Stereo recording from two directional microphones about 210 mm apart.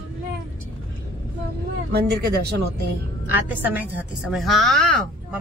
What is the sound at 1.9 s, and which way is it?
Speech, 50° right (ahead or behind).